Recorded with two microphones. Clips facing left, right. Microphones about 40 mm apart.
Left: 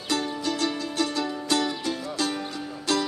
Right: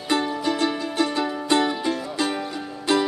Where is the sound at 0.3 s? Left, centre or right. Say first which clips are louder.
Right 4 dB; centre.